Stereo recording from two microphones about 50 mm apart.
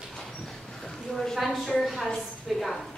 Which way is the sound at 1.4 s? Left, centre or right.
Centre.